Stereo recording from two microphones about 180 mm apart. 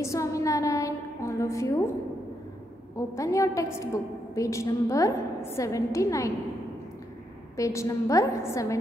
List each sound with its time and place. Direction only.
0.0 s a sound: 15° left (ahead or behind)
3.0 s a woman's voice: 15° left (ahead or behind)
7.5 s a woman's voice: 15° left (ahead or behind)